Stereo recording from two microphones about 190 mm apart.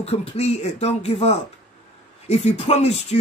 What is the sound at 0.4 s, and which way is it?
Speech, 35° left (ahead or behind).